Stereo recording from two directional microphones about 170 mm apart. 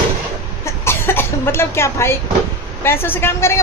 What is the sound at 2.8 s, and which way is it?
Speech, 15° left (ahead or behind).